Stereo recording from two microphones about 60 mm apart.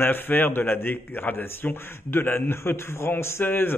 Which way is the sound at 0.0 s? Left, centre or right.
Left.